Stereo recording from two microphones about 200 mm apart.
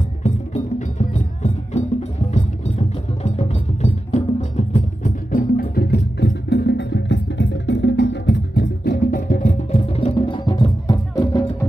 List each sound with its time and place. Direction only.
0.2 s music: 35° left (ahead or behind); by 11.4 s 20° left (ahead or behind)